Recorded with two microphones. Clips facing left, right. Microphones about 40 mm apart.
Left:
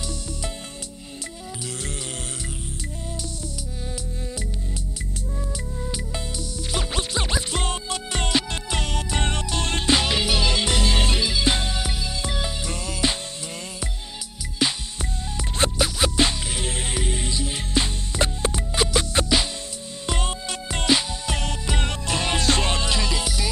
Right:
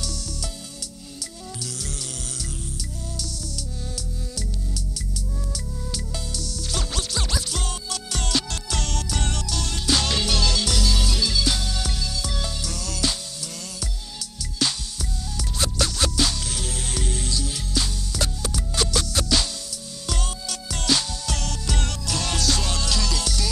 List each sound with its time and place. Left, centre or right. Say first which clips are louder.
6.7 s scratch: left 3 dB; left
9.9 s music: right 2 dB; centre
14.6 s music: left 2 dB; left
15.0 s music: left 2 dB; left